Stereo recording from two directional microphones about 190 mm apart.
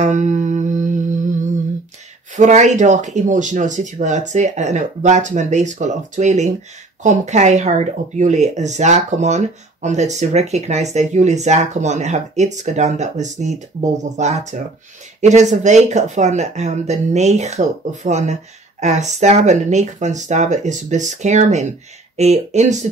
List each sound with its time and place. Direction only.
0.0 s music: 40° right (ahead or behind)
2.3 s speech: 40° right (ahead or behind)